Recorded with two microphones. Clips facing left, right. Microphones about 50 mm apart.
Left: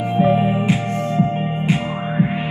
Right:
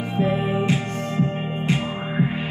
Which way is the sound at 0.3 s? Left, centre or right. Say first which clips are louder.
Left 5 dB; centre.